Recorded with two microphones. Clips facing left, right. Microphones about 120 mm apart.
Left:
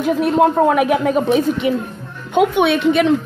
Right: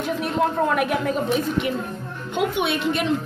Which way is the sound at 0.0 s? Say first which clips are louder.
Left 8 dB; 50° left (ahead or behind).